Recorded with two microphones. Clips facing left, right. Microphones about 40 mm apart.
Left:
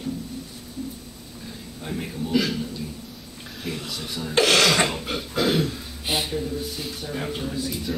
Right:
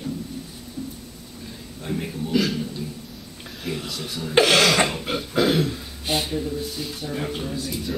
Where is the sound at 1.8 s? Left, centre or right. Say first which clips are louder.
Right 2 dB; centre.